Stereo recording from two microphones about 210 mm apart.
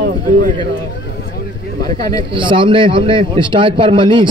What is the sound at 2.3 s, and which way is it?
A man's voice, 25° right (ahead or behind).